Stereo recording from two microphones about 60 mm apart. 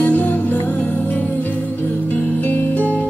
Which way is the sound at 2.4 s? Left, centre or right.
Left.